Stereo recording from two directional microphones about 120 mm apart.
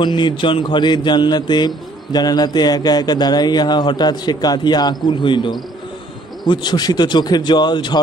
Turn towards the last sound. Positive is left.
turn(degrees=40)  # may be behind; listen again after turning